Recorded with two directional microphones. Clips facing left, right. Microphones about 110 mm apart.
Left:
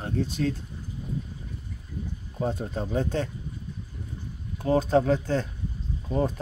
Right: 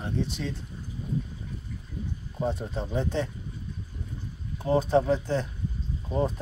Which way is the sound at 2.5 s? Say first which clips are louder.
Left 1 dB; 50° left (ahead or behind).